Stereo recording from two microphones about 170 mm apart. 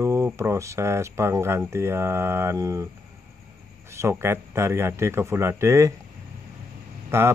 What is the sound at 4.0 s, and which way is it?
Speech, 15° right (ahead or behind).